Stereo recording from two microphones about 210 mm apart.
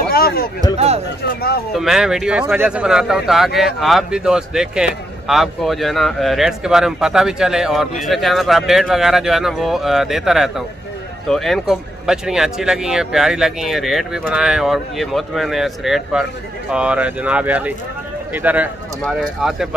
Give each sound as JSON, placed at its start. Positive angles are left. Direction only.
{"t": 0.1, "sound": "a sound", "side_deg": 45}
{"t": 0.7, "sound": "speech", "side_deg": -30}
{"t": 1.3, "sound": "speech", "side_deg": 50}
{"t": 1.7, "sound": "speech", "side_deg": 0}